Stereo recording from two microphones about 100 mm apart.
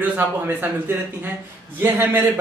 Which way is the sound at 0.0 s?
20° right (ahead or behind).